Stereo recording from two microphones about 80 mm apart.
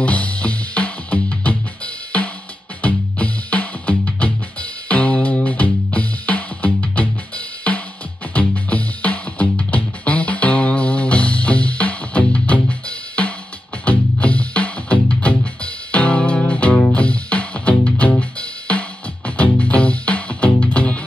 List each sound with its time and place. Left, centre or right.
0.0 s music: centre
2.8 s music: centre